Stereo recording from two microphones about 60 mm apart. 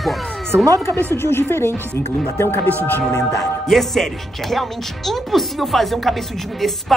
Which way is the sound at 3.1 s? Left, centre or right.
Left.